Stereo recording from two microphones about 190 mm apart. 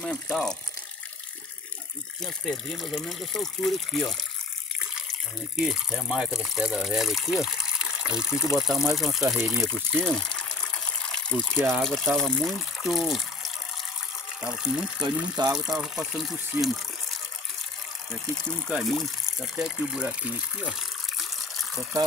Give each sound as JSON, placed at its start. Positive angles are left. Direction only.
{"t": 0.0, "sound": "speech", "side_deg": 5}
{"t": 2.2, "sound": "speech", "side_deg": 0}
{"t": 5.7, "sound": "speech", "side_deg": 0}
{"t": 15.0, "sound": "speech", "side_deg": -20}
{"t": 15.5, "sound": "speech", "side_deg": 0}
{"t": 18.7, "sound": "speech", "side_deg": 0}